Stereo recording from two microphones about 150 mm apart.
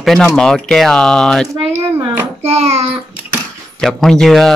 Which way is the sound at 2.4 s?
45° right (ahead or behind).